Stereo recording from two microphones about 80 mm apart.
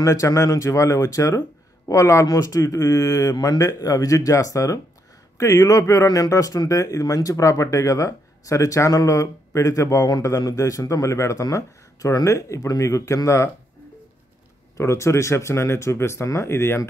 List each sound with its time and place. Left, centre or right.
0.0 s speech: left
14.8 s speech: left